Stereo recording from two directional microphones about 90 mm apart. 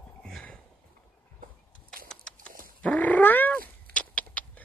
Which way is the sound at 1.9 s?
10° left (ahead or behind).